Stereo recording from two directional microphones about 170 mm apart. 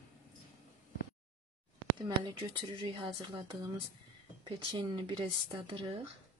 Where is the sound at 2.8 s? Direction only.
30° right (ahead or behind).